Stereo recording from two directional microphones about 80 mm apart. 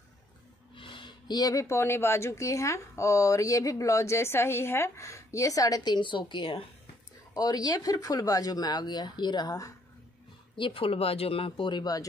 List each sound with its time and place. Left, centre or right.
0.7 s speech: left
5.9 s a woman's voice: left
7.3 s speech: left
10.6 s speech: left
11.5 s speech: left